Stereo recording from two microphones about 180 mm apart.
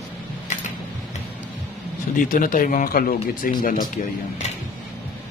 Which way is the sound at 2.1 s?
50° left (ahead or behind).